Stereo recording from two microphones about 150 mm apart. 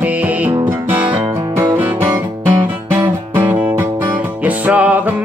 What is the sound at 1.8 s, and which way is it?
Music, 15° right (ahead or behind).